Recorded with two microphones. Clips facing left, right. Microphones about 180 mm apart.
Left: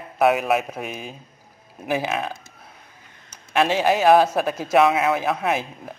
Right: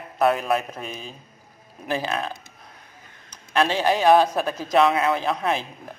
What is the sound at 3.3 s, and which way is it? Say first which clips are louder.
A man's voice: left 2 dB; 10° left (ahead or behind).